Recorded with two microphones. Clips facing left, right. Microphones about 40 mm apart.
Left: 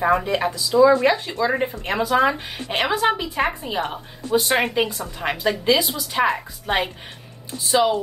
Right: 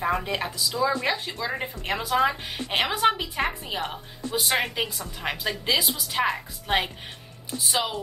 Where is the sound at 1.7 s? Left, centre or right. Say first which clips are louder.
Left 5 dB; centre.